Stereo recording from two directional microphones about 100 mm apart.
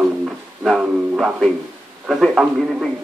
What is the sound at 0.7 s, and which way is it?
Music, 5° right (ahead or behind).